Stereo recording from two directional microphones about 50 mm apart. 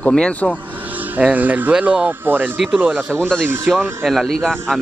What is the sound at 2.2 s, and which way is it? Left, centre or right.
Speech, right.